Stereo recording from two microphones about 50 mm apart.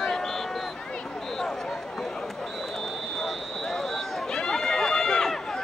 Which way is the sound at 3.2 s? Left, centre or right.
Centre.